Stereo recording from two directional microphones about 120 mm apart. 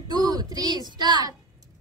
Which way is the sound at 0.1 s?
35° right (ahead or behind).